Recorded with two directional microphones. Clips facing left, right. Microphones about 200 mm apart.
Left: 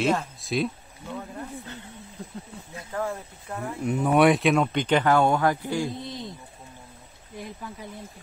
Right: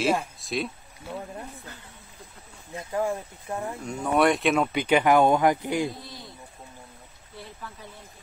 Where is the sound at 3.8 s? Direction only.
Centre (ahead or behind); by 5.9 s 20° right (ahead or behind).